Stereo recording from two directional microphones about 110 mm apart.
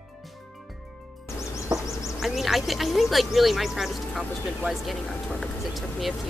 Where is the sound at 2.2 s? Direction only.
Centre (ahead or behind).